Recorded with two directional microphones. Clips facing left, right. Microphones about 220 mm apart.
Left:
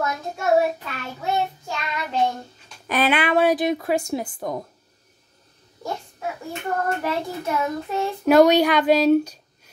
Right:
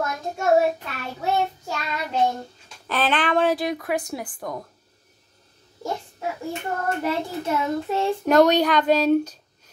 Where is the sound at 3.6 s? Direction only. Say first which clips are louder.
Left 4 dB; 25° left (ahead or behind).